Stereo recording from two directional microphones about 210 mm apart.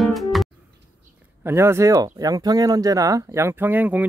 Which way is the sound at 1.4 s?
10° right (ahead or behind).